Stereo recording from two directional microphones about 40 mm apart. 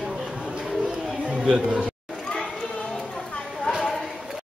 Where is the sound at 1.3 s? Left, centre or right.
Right.